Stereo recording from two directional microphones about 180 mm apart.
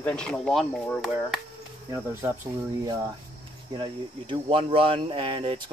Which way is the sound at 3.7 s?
25° right (ahead or behind).